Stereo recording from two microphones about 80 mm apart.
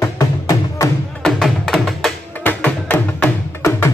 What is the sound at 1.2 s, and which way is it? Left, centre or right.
Music, centre.